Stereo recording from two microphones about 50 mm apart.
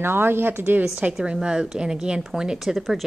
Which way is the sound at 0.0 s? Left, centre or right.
Right.